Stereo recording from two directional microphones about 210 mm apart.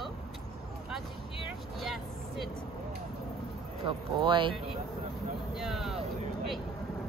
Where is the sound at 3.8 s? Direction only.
25° right (ahead or behind).